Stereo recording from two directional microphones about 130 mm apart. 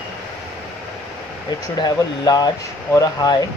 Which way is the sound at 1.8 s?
30° left (ahead or behind).